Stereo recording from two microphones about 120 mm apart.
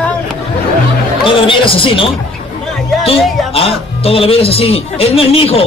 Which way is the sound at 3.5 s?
55° left (ahead or behind).